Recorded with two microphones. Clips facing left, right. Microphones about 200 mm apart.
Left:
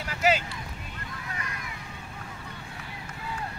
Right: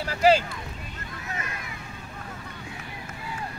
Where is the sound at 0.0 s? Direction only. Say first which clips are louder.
Right 6 dB; 35° right (ahead or behind).